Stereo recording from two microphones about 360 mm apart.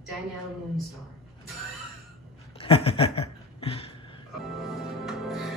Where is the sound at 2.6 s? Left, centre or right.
Centre.